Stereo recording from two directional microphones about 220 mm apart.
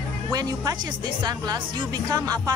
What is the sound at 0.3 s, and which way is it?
Speech, 15° right (ahead or behind).